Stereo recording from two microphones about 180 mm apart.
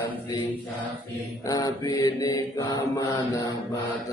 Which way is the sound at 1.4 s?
20° left (ahead or behind).